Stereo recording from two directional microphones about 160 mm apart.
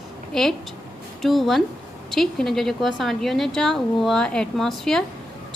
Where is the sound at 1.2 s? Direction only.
Centre (ahead or behind).